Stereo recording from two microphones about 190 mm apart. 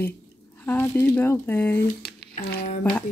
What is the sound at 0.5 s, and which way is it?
Speech, 10° left (ahead or behind).